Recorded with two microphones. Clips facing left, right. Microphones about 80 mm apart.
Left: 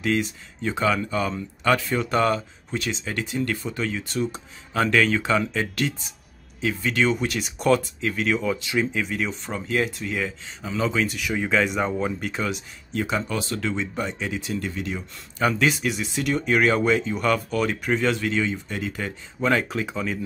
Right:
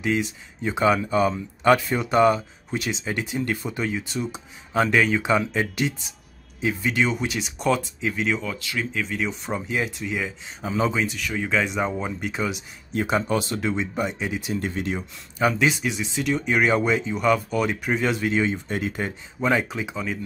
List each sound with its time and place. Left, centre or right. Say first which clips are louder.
0.0 s speech: even; centre
10.6 s speech: right 2 dB; right
11.1 s speech: left 2 dB; centre
12.9 s speech: right 3 dB; right
19.4 s speech: even; centre